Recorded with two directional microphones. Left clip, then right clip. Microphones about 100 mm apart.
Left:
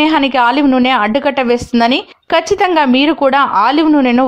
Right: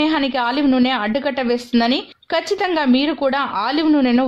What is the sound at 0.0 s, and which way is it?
A woman's voice, 35° left (ahead or behind).